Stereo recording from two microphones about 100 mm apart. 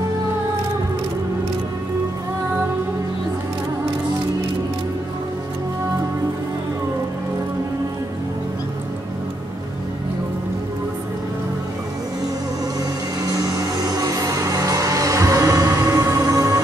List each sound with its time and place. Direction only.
13.2 s music: 35° right (ahead or behind)